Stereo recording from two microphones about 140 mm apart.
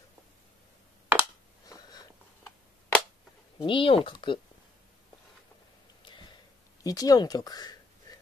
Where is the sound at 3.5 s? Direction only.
40° left (ahead or behind).